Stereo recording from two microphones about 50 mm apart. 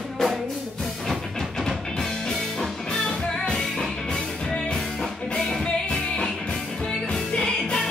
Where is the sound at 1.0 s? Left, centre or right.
Centre.